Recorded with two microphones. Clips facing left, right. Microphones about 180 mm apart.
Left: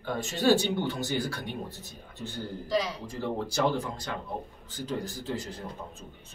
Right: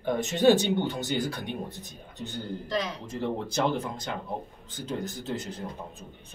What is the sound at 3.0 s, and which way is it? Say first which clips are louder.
A man's voice: right 1 dB; 20° right (ahead or behind).